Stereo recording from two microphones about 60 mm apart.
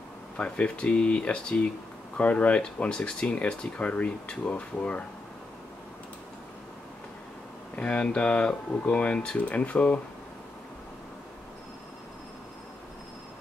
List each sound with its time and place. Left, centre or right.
0.4 s speech: centre
7.7 s speech: left